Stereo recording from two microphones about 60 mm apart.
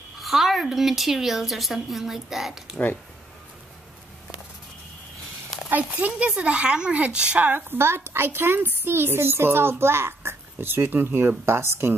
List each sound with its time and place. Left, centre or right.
0.2 s a woman's voice: centre
5.7 s speech: right
7.7 s a woman's voice: right